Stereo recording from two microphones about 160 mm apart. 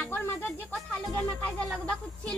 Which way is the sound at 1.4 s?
5° left (ahead or behind).